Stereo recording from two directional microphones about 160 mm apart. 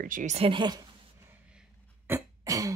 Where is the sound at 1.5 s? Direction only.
10° right (ahead or behind).